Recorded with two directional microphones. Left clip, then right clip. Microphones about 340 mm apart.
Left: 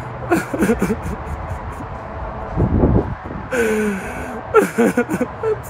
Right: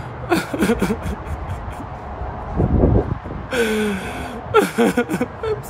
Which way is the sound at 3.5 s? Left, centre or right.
Centre.